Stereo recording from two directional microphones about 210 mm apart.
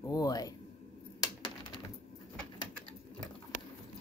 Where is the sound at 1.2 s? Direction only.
20° left (ahead or behind).